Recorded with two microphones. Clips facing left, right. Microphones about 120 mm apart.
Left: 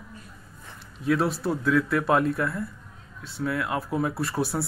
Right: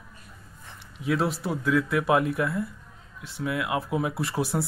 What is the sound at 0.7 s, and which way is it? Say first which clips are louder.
Speech: left 2 dB; 15° right (ahead or behind).